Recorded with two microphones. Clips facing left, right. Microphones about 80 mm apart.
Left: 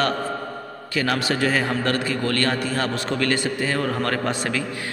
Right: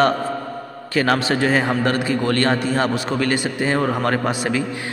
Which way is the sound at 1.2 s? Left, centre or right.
Right.